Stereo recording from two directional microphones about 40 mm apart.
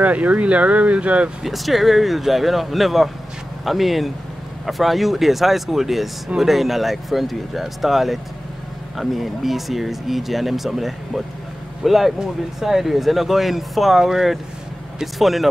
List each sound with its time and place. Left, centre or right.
0.0 s speech: right
1.4 s speech: centre